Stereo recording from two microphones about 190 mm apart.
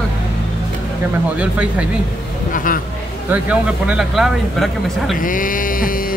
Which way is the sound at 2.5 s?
45° left (ahead or behind).